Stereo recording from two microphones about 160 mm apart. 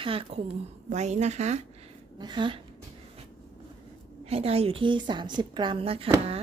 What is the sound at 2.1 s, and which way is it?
Speech, 30° right (ahead or behind).